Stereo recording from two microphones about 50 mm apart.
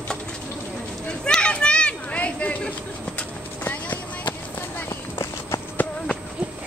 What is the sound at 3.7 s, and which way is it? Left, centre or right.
Clip-clop, left.